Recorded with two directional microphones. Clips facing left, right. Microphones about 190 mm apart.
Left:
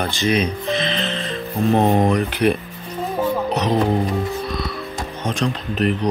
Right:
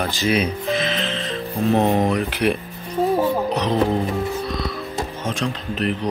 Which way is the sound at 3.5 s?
20° left (ahead or behind).